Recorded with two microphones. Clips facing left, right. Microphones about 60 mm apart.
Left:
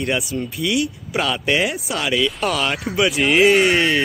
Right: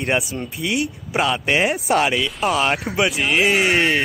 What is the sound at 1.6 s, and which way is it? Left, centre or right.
Speech, right.